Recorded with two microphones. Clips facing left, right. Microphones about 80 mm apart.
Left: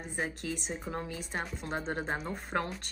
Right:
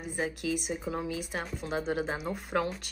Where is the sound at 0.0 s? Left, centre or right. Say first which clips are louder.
Right 3 dB; centre.